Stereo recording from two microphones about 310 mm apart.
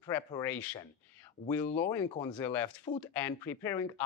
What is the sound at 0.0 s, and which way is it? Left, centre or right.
Speech, centre.